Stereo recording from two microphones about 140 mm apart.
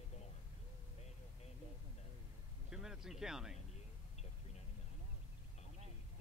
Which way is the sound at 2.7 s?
5° right (ahead or behind).